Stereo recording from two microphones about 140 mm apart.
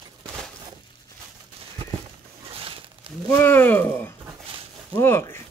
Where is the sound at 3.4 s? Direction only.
15° left (ahead or behind).